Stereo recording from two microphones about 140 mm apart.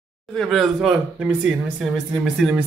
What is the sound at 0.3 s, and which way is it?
Speech, centre (ahead or behind).